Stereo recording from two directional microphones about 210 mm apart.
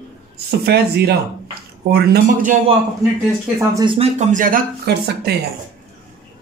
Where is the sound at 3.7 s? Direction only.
25° right (ahead or behind); by 5.3 s 50° right (ahead or behind).